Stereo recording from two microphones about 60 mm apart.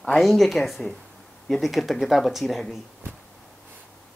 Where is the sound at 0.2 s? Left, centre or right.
Centre.